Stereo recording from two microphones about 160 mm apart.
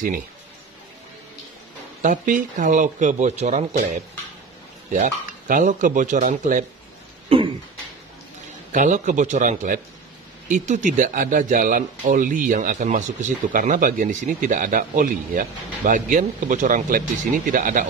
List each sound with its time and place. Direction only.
2.0 s speech: 55° right (ahead or behind)
4.9 s speech: 55° right (ahead or behind)
7.2 s a sound: 35° right (ahead or behind)
8.7 s speech: 50° right (ahead or behind)